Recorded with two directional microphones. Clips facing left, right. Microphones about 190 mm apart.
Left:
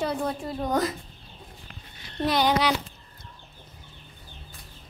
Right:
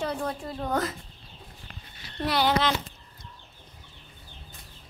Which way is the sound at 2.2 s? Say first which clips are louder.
Left 2 dB; 20° left (ahead or behind).